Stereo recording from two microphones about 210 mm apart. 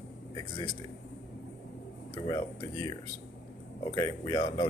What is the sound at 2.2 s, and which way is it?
Speech, 20° left (ahead or behind).